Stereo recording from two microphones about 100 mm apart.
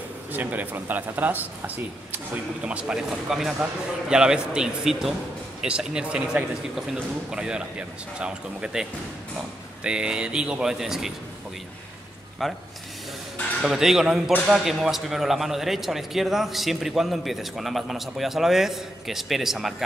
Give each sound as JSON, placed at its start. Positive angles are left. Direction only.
{"t": 0.3, "sound": "a man's voice", "side_deg": -15}
{"t": 2.6, "sound": "a man's voice", "side_deg": -10}
{"t": 9.8, "sound": "a man's voice", "side_deg": -10}
{"t": 12.4, "sound": "speech", "side_deg": 0}
{"t": 13.6, "sound": "speech", "side_deg": -5}